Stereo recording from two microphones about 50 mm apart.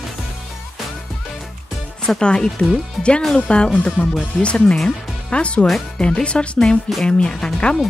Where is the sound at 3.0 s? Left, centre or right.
Centre.